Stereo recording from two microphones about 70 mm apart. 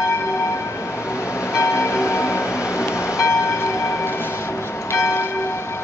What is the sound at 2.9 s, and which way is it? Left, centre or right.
Train, left.